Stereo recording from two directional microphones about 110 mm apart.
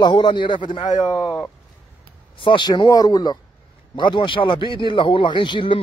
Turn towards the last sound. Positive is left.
turn(degrees=50)  # may be behind; listen again after turning